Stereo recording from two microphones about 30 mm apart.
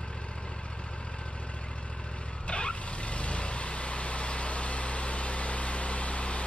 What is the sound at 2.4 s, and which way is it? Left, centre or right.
Vehicle, left.